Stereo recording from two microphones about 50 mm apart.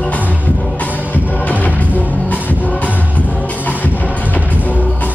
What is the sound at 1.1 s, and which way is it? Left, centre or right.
Music, left.